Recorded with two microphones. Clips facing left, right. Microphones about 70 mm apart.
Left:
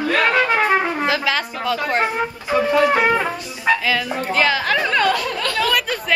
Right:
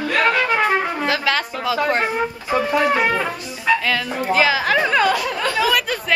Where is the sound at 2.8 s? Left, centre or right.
Centre.